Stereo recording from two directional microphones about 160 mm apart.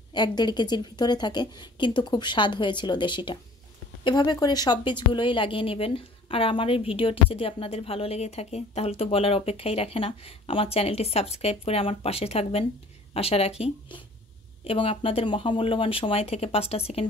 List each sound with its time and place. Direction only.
0.1 s a woman's voice: 25° left (ahead or behind)